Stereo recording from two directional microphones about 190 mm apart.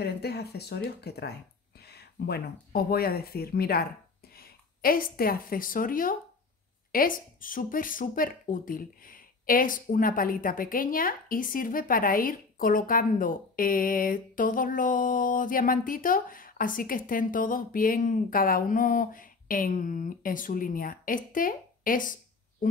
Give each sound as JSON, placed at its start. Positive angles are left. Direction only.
{"t": 0.0, "sound": "a woman's voice", "side_deg": 60}